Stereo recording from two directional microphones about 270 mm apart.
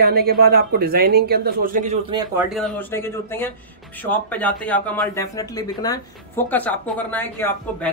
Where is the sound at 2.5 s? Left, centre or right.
Centre.